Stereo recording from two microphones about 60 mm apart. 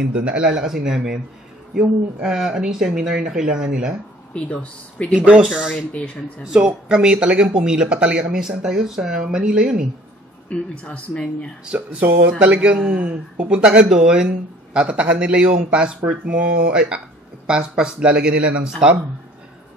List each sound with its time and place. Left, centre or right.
0.1 s speech: centre
4.3 s speech: left
5.1 s speech: centre
10.5 s speech: centre
11.6 s speech: centre